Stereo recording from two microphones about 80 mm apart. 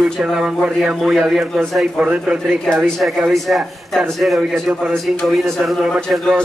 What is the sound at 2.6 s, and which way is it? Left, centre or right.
A man's voice, centre.